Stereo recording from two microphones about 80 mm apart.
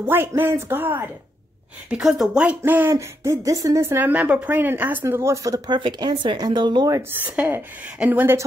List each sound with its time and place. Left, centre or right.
0.0 s speech: right
1.9 s a woman's voice: centre
2.6 s speech: right
2.9 s speech: right
4.0 s speech: centre
5.0 s speech: right
5.7 s speech: right
7.2 s speech: centre